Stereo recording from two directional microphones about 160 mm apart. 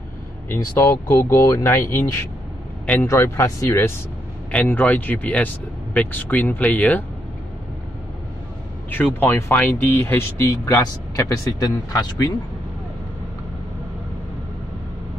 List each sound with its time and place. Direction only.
0.5 s speech: 15° left (ahead or behind)
8.9 s speech: 10° left (ahead or behind)